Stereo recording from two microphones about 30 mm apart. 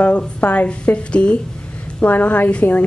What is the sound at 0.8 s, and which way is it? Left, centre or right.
Speech, left.